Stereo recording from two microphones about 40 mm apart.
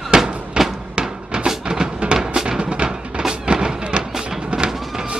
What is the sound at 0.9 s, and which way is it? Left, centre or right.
Cupboard open or close, right.